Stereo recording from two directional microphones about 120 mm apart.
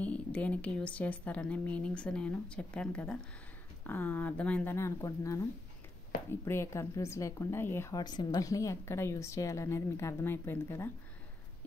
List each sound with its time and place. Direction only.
0.0 s a woman's voice: 10° left (ahead or behind)
7.9 s a woman's voice: 35° left (ahead or behind); by 10.9 s 20° left (ahead or behind)